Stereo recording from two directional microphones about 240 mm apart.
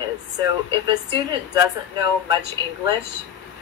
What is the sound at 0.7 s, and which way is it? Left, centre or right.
A woman's voice, centre.